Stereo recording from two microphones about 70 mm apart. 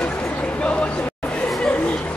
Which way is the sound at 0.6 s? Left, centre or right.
Centre.